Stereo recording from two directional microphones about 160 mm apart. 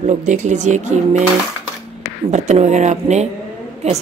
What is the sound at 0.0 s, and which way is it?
Speech, 50° right (ahead or behind).